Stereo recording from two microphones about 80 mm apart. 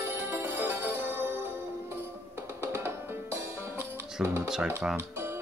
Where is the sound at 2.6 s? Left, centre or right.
Right.